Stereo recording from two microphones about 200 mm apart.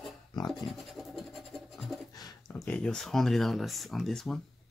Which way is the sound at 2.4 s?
5° left (ahead or behind).